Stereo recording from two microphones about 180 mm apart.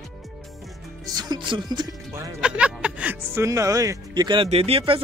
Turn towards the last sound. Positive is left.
turn(degrees=-30)  # may be behind; listen again after turning